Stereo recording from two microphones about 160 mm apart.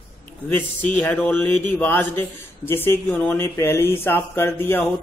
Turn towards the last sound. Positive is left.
turn(degrees=15)  # may be behind; listen again after turning